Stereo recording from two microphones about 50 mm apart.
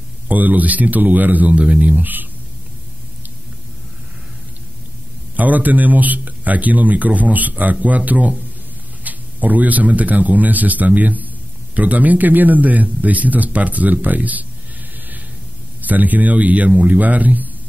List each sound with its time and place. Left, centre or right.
0.3 s a man's voice: right
1.6 s speech: right
5.3 s a man's voice: right
15.8 s a man's voice: right